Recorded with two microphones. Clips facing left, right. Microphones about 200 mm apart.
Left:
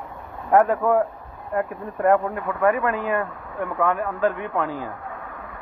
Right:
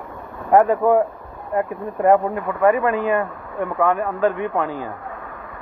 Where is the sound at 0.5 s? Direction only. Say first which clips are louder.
Right 3 dB; 5° right (ahead or behind).